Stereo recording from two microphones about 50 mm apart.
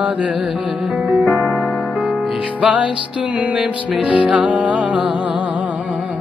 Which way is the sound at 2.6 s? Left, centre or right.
Right.